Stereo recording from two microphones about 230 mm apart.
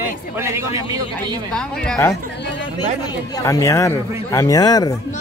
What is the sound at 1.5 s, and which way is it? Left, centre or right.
Speech, centre.